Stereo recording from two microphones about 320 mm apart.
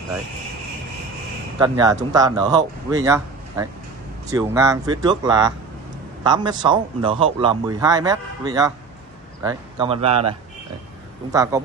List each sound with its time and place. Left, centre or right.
1.6 s a man's voice: centre
11.3 s a man's voice: centre